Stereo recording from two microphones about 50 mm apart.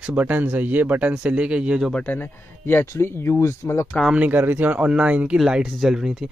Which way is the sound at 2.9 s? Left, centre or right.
Left.